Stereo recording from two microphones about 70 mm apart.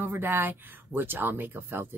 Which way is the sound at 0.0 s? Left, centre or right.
Right.